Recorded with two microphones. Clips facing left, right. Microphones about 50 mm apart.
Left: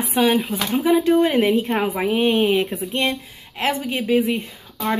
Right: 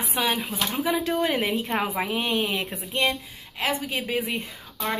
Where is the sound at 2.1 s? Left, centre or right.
Left.